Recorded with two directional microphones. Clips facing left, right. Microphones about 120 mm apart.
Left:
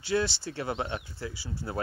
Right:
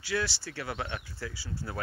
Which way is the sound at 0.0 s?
25° left (ahead or behind).